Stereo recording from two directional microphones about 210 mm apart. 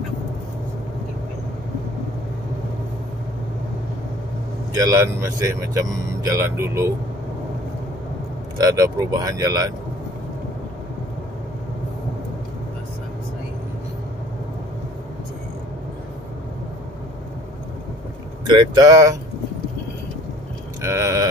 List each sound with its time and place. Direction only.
4.8 s speech: 15° right (ahead or behind)
8.5 s speech: 15° right (ahead or behind)
18.5 s speech: 20° right (ahead or behind)
20.8 s a sound: 15° right (ahead or behind)